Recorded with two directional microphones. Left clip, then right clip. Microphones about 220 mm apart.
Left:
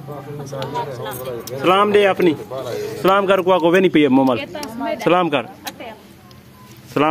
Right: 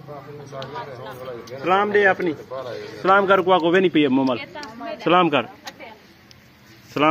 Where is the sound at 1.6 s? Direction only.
10° left (ahead or behind).